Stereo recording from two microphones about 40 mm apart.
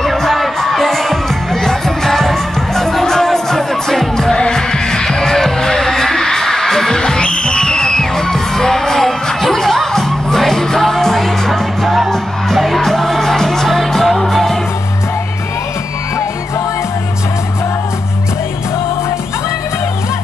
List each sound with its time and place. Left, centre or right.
0.0 s music: centre
7.0 s music: left; by 14.6 s centre